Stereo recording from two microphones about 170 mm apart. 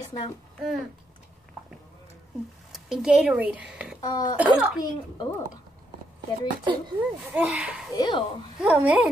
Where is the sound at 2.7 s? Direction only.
5° right (ahead or behind).